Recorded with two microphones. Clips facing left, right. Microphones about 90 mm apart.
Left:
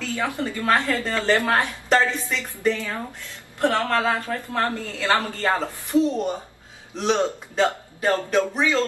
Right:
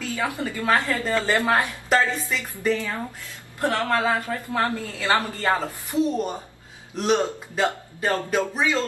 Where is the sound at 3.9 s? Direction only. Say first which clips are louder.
Even; 15° right (ahead or behind).